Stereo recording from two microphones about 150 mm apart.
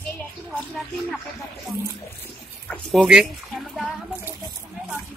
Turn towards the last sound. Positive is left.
turn(degrees=0)  # may be behind; listen again after turning